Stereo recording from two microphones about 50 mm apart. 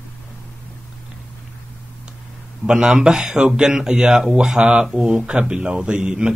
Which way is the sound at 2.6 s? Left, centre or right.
Centre.